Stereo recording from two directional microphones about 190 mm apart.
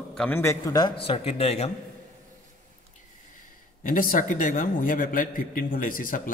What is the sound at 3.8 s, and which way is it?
A man's voice, 45° left (ahead or behind).